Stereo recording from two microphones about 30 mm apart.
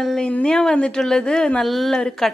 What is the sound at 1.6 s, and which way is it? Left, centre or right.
Speech, centre.